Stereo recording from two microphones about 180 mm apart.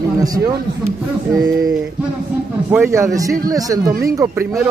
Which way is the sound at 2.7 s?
15° right (ahead or behind).